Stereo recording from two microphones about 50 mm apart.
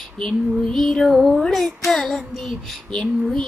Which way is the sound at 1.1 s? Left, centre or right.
Centre.